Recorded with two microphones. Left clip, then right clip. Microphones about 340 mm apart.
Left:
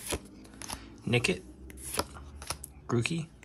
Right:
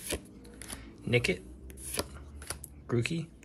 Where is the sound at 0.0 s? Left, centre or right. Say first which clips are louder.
Left 1 dB; centre.